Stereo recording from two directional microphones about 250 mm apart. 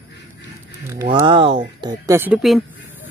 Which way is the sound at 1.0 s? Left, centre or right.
Centre.